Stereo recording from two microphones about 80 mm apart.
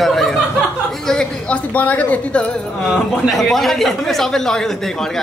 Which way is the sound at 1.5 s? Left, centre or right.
Left.